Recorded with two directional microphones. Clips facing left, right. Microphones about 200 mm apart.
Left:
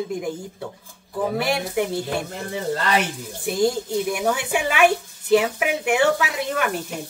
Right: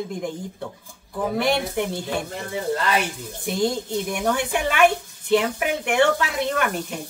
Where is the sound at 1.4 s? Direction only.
5° left (ahead or behind).